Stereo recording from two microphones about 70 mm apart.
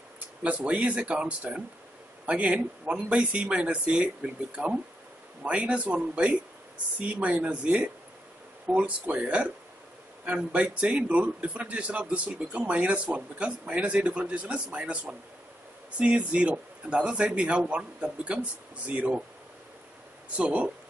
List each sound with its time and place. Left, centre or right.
0.4 s a man's voice: centre
20.3 s a man's voice: centre